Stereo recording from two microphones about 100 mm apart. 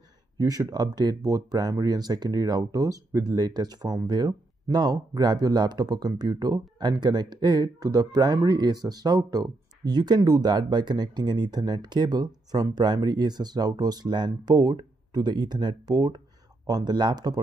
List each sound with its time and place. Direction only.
0.4 s speech: 35° right (ahead or behind)